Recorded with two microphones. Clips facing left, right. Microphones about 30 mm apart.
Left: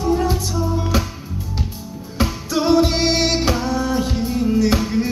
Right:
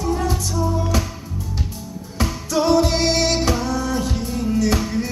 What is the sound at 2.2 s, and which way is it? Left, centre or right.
Music, centre.